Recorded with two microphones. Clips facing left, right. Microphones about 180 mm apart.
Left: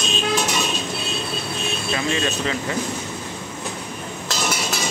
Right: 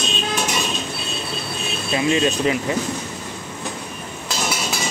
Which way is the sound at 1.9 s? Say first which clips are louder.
Right 6 dB; 15° right (ahead or behind).